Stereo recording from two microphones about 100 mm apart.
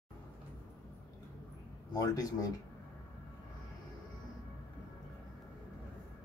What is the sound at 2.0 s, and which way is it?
Speech, 35° left (ahead or behind).